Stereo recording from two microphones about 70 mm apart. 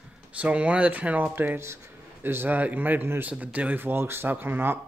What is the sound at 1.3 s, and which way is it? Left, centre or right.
A man's voice, right.